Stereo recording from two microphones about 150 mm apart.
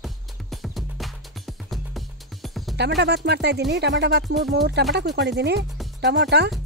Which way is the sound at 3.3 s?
90° right.